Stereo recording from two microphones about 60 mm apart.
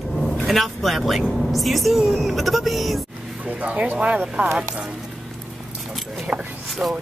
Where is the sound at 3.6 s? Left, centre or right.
Right.